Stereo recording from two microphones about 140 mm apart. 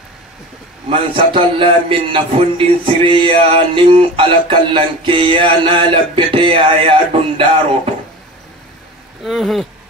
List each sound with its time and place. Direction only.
0.8 s a man's voice: 40° right (ahead or behind)
9.2 s speech: centre (ahead or behind)